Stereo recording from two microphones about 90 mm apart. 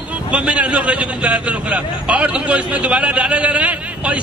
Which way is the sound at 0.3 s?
15° right (ahead or behind).